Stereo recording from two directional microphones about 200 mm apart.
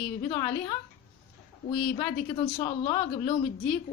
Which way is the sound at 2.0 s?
25° left (ahead or behind).